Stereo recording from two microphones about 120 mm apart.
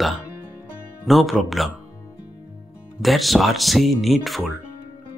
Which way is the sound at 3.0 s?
Centre (ahead or behind).